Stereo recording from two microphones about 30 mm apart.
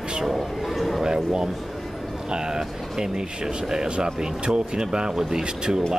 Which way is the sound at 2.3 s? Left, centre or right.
Right.